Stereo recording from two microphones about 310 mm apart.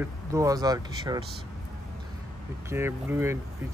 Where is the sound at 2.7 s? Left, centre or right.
Centre.